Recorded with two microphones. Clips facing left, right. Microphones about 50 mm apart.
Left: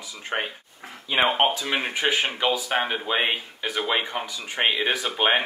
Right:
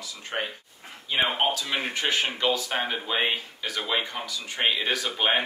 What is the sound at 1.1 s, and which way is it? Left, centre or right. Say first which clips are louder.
Speech: left 4 dB; left.